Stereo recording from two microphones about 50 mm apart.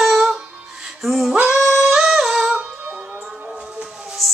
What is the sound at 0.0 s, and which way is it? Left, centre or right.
Music, centre.